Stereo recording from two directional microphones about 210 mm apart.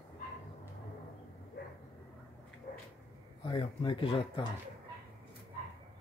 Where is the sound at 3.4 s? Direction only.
25° left (ahead or behind).